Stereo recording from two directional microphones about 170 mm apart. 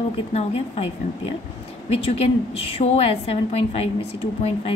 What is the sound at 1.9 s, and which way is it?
A woman's voice, 35° left (ahead or behind).